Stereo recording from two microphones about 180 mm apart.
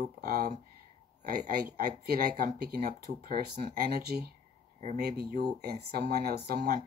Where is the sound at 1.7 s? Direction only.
55° right (ahead or behind).